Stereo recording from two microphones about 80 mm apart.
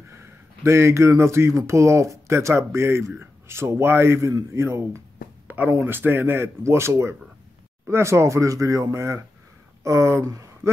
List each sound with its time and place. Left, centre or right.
0.1 s speech: right
5.5 s speech: right